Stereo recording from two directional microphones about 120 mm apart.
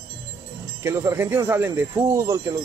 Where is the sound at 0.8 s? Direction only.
20° right (ahead or behind).